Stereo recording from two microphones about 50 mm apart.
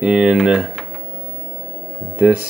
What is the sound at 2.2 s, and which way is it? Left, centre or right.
Speech, right.